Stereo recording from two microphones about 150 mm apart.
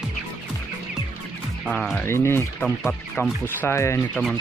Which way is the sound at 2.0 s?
15° left (ahead or behind).